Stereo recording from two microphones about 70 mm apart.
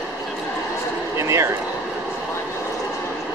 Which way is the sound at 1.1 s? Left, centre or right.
Right.